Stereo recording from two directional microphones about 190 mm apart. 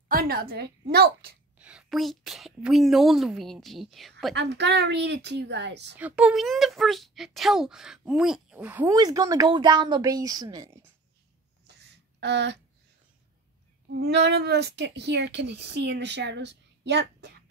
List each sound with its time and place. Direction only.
0.1 s a woman's voice: 50° right (ahead or behind)
1.6 s speech: 5° right (ahead or behind)
4.4 s speech: 65° right (ahead or behind)
5.9 s speech: 5° right (ahead or behind)
8.9 s speech: 20° right (ahead or behind)
11.8 s a sound: 65° right (ahead or behind)
13.9 s speech: 60° right (ahead or behind)